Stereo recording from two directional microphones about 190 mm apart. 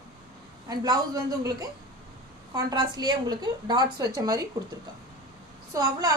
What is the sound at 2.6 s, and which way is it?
A woman's voice, 20° right (ahead or behind).